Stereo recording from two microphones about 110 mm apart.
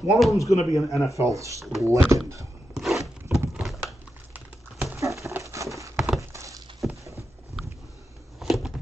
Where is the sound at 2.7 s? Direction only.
Centre (ahead or behind).